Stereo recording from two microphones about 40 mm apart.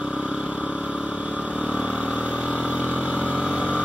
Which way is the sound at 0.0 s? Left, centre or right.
Right.